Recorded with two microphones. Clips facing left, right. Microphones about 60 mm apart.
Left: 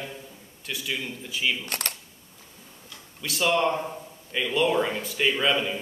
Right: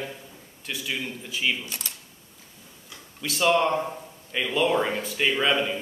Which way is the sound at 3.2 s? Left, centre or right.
Centre.